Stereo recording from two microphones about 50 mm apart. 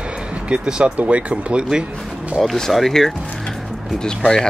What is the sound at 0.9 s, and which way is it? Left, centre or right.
Speech, right.